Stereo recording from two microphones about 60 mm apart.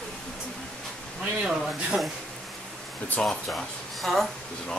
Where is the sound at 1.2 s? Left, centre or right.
Centre.